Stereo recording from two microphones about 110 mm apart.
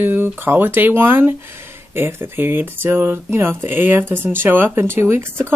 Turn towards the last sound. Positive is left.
turn(degrees=-20)  # may be behind; listen again after turning